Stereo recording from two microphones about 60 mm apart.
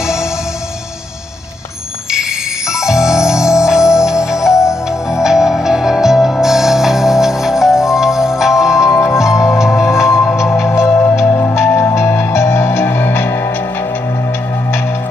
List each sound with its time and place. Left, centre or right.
2.8 s music: centre
8.9 s music: left
9.2 s music: centre
10.4 s music: left